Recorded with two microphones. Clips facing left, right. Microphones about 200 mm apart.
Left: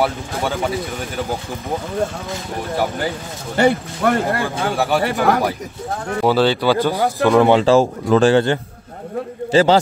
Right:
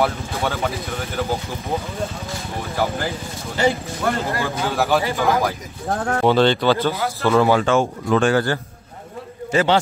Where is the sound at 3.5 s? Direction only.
60° left (ahead or behind).